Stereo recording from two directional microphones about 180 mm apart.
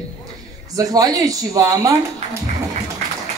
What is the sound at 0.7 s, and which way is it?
Speech, 20° right (ahead or behind).